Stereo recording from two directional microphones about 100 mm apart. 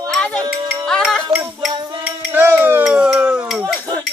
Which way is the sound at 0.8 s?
5° left (ahead or behind).